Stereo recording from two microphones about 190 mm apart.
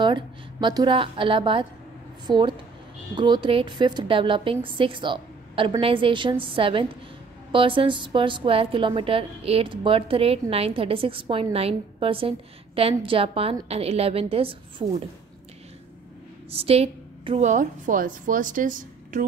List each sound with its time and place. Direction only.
0.0 s a woman's voice: 25° right (ahead or behind)
16.4 s a woman's voice: 30° right (ahead or behind)